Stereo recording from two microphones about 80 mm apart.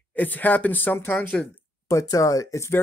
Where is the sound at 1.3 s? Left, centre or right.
Centre.